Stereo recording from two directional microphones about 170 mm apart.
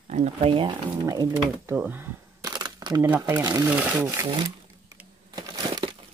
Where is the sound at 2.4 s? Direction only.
25° right (ahead or behind).